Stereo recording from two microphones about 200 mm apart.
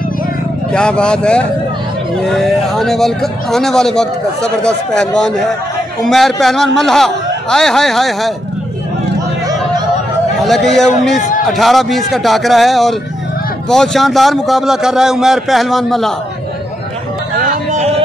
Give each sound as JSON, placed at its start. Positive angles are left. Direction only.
{"t": 0.7, "sound": "speech", "side_deg": 5}
{"t": 10.4, "sound": "speech", "side_deg": 0}
{"t": 17.6, "sound": "a sound", "side_deg": -35}